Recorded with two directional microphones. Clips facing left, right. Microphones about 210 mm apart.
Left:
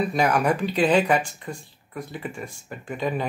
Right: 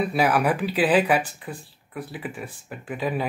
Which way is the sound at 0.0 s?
5° right (ahead or behind).